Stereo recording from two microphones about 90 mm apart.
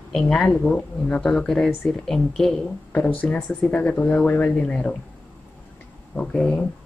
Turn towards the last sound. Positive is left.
turn(degrees=10)  # may be behind; listen again after turning